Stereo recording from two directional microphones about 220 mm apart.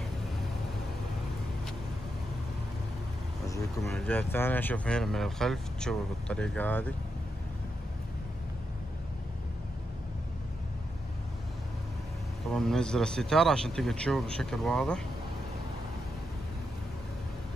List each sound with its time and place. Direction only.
3.8 s speech: 5° left (ahead or behind)
12.5 s speech: centre (ahead or behind)